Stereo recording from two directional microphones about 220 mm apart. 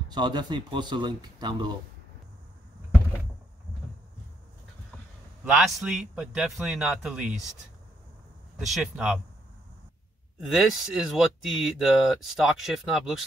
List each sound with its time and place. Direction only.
0.1 s speech: 20° right (ahead or behind)
5.4 s speech: centre (ahead or behind)
8.5 s speech: centre (ahead or behind)
10.4 s speech: centre (ahead or behind)